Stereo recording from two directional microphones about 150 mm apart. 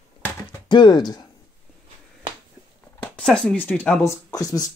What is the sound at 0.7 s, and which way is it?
Speech, 30° left (ahead or behind).